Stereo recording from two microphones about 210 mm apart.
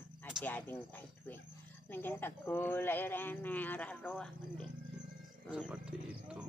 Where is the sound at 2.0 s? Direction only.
10° left (ahead or behind).